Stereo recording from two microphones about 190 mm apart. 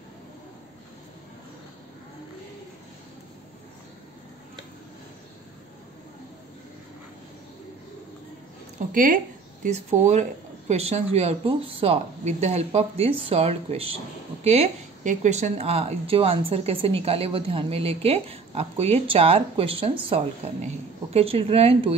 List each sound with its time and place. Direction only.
8.9 s a woman's voice: 45° right (ahead or behind)